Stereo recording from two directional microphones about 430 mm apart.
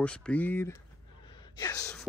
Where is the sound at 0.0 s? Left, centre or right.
Centre.